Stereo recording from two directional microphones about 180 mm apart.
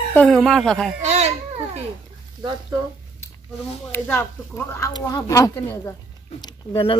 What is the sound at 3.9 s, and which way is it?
Speech, 10° left (ahead or behind).